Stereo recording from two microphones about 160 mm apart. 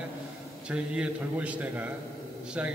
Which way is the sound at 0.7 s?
5° right (ahead or behind).